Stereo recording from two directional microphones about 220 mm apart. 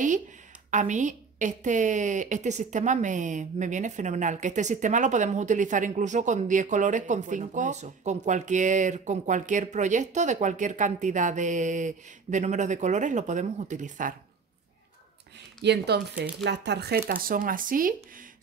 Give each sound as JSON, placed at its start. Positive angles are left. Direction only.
{"t": 0.7, "sound": "a woman's voice", "side_deg": -35}
{"t": 15.6, "sound": "a woman's voice", "side_deg": -50}